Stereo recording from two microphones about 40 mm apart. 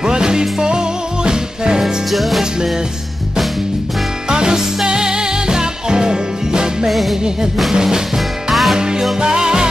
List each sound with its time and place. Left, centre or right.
0.0 s music: centre
2.0 s music: centre
4.3 s music: centre
6.9 s music: centre
7.7 s music: centre
8.5 s music: centre
8.7 s music: centre